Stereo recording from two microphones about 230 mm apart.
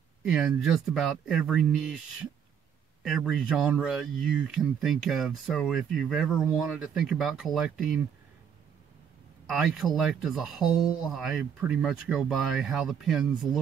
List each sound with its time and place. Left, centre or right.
0.3 s speech: centre
3.0 s speech: centre
9.5 s speech: centre